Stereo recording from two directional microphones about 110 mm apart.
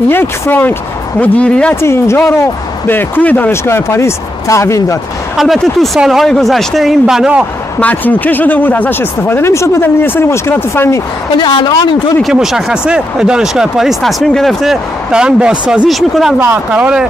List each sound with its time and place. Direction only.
0.1 s speech: 20° left (ahead or behind)
1.8 s speech: 25° left (ahead or behind)
5.4 s speech: centre (ahead or behind)
7.8 s speech: 15° left (ahead or behind)
11.3 s a woman's voice: 45° left (ahead or behind)
12.2 s speech: 5° right (ahead or behind)
16.3 s speech: 15° right (ahead or behind)